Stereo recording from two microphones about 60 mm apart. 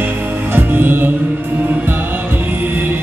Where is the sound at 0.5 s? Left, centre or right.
Right.